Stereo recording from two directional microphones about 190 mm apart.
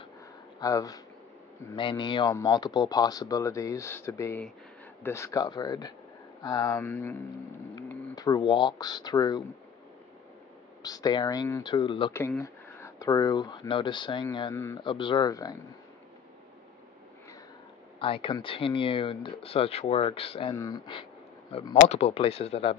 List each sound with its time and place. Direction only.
0.6 s speech: 20° left (ahead or behind)
7.7 s a sound: 20° left (ahead or behind)
8.4 s speech: 25° left (ahead or behind)
10.8 s speech: 20° left (ahead or behind)
12.1 s speech: 15° left (ahead or behind)
14.5 s speech: 15° left (ahead or behind)
14.9 s speech: 25° left (ahead or behind)
17.9 s speech: 30° left (ahead or behind)